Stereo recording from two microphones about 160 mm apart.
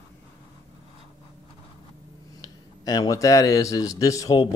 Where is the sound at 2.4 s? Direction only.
25° left (ahead or behind).